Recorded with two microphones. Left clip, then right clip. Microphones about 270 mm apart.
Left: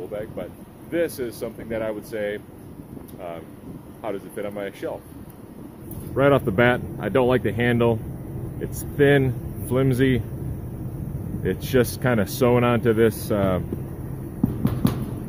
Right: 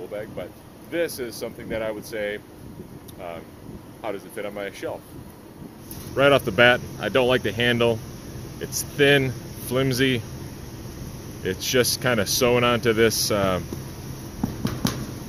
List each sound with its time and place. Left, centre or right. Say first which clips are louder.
0.1 s speech: left 1 dB; centre
6.1 s speech: right 1 dB; centre
11.4 s speech: even; centre